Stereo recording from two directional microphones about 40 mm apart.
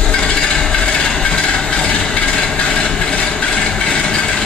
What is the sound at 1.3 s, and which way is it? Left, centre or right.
Vehicle, left.